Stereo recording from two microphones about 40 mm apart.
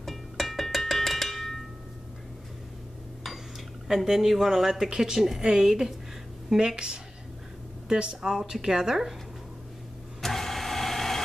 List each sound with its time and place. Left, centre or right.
0.0 s music: centre
3.8 s a woman's voice: centre
10.2 s vehicle: centre